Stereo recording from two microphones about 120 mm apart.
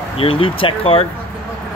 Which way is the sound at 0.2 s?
50° left (ahead or behind).